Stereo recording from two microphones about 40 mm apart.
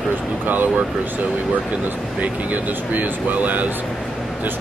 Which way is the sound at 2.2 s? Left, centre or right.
Right.